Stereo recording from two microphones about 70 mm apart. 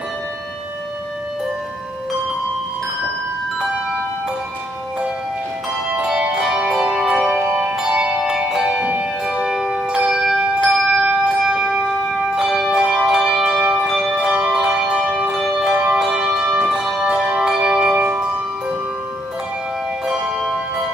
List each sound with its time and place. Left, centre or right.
5.9 s music: centre
7.4 s music: centre
9.2 s bell: centre
12.4 s church bell: centre
13.0 s bell: centre
14.1 s bell: centre
14.5 s church bell: centre
15.7 s church bell: centre
20.1 s music: centre